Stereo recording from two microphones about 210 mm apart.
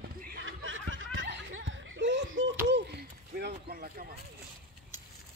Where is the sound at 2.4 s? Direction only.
55° right (ahead or behind).